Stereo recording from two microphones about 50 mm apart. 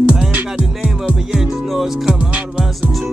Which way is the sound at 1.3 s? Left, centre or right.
Centre.